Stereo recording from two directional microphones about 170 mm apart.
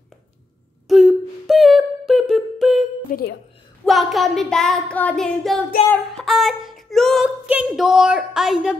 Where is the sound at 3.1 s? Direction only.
55° left (ahead or behind).